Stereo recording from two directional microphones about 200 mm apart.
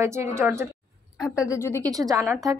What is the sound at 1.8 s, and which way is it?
Speech, 15° right (ahead or behind).